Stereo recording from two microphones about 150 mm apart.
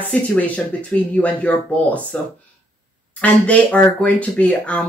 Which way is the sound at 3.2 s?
10° left (ahead or behind).